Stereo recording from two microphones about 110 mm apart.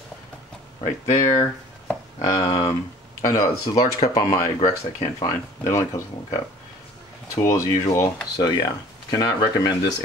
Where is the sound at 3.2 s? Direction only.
35° left (ahead or behind).